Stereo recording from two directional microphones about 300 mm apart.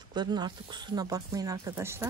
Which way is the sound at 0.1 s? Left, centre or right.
Centre.